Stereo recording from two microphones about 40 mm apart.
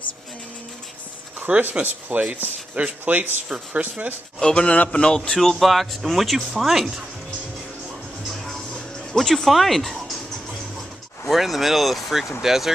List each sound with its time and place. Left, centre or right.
1.6 s speech: right
4.4 s speech: centre
5.4 s speech: centre
8.5 s music: centre
11.2 s speech: centre